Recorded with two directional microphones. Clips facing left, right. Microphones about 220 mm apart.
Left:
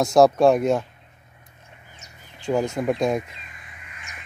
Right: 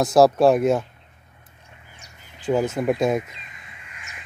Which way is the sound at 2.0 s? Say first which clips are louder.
Even; 5° right (ahead or behind).